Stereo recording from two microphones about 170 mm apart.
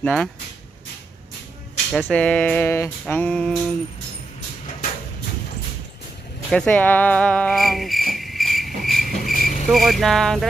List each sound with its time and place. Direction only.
0.0 s vehicle: 5° left (ahead or behind)
1.9 s a sound: 5° right (ahead or behind)
6.5 s a sound: 5° left (ahead or behind)
8.1 s cricket: centre (ahead or behind)
9.2 s insect: 55° left (ahead or behind)
9.7 s vehicle: centre (ahead or behind)